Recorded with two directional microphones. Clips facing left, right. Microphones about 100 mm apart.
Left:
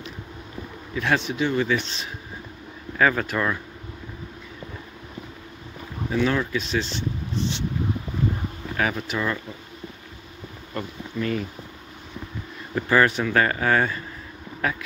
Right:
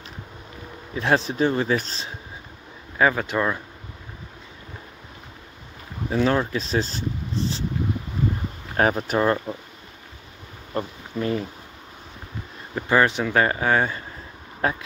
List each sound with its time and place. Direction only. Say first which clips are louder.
0.9 s speech: right 2 dB; 30° right (ahead or behind)
3.0 s speech: right 1 dB; 20° right (ahead or behind)
6.0 s speech: right 2 dB; 35° right (ahead or behind)
8.7 s speech: right 6 dB; 40° right (ahead or behind)
10.7 s speech: right 3 dB; 30° right (ahead or behind)
12.7 s speech: even; 20° right (ahead or behind)
14.6 s speech: right 2 dB; 30° right (ahead or behind)